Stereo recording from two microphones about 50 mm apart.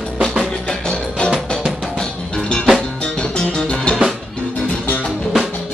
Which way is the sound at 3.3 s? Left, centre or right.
Centre.